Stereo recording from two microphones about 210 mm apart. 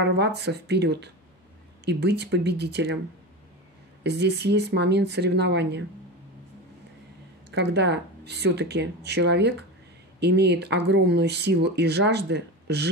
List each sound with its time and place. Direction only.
0.0 s speech: 55° right (ahead or behind)
4.0 s speech: 55° right (ahead or behind)
7.5 s speech: 55° right (ahead or behind)